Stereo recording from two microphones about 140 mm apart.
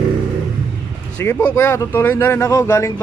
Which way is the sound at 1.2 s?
15° left (ahead or behind).